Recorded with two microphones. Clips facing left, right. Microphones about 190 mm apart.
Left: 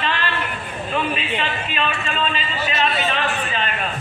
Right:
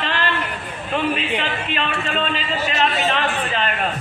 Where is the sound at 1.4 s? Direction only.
65° right (ahead or behind).